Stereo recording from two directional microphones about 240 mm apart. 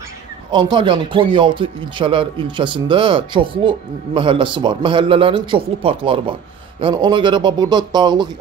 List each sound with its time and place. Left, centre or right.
0.5 s speech: centre